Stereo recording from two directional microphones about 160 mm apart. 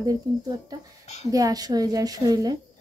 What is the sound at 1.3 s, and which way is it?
Speech, 20° right (ahead or behind).